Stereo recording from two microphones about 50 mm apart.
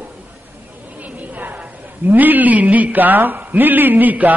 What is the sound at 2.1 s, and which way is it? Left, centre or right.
A man's voice, right.